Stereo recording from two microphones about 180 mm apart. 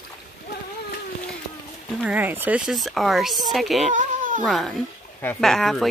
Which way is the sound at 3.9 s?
50° right (ahead or behind).